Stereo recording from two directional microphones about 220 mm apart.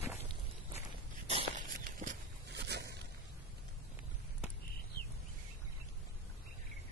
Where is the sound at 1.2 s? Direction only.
30° right (ahead or behind).